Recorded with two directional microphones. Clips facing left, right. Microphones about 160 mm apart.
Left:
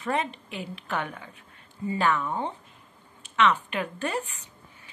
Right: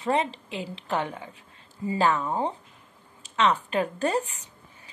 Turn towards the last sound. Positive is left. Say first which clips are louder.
# right 5 dB
turn(degrees=-40)  # may be behind; listen again after turning